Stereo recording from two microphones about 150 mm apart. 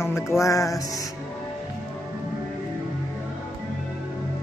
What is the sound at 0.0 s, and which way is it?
Music, 20° left (ahead or behind).